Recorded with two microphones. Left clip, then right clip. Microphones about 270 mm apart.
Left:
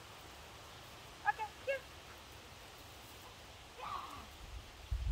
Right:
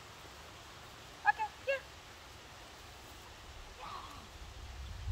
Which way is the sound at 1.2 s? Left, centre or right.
Centre.